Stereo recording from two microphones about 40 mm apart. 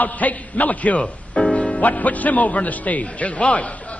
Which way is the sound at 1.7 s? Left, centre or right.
Left.